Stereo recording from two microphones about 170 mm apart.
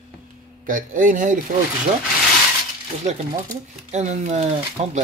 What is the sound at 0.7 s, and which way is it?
Speech, 50° right (ahead or behind).